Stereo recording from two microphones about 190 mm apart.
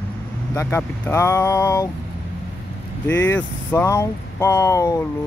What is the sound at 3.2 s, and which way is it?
Speech, 10° left (ahead or behind).